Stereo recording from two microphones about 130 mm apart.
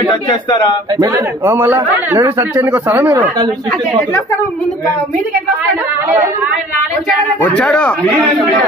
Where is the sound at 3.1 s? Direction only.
30° right (ahead or behind).